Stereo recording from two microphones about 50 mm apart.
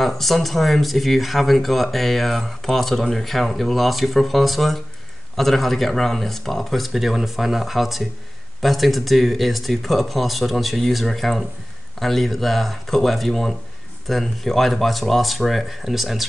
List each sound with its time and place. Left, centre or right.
0.0 s speech: centre